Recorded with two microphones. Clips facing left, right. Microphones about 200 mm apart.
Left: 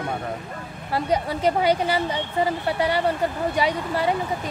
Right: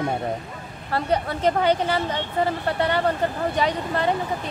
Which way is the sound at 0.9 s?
10° left (ahead or behind).